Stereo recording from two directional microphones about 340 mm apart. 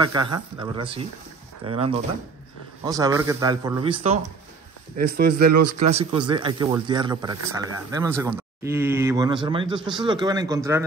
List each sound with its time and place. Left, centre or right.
0.0 s speech: centre